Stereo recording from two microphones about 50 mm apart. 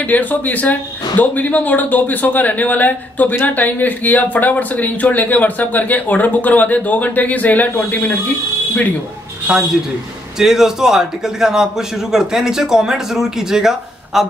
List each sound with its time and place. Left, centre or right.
0.0 s speech: left
10.4 s speech: centre